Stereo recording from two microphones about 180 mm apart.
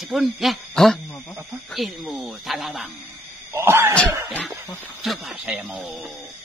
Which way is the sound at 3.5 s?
15° right (ahead or behind).